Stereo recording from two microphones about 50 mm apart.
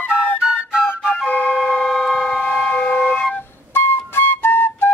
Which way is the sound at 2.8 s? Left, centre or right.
Left.